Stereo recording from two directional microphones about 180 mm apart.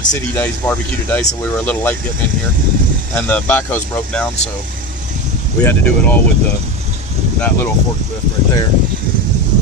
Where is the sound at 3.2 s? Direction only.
10° left (ahead or behind).